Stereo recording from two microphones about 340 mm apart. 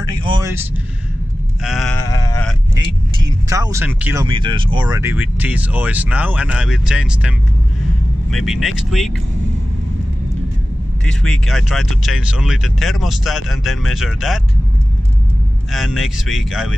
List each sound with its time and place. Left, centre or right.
0.1 s vehicle: centre
1.6 s speech: centre
2.0 s sheep: left
3.4 s speech: centre
11.1 s speech: centre
15.7 s speech: centre